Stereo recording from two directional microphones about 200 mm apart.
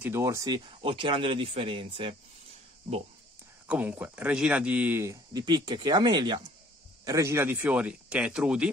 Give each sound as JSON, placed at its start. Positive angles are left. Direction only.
{"t": 0.0, "sound": "speech", "side_deg": -15}
{"t": 3.6, "sound": "speech", "side_deg": -10}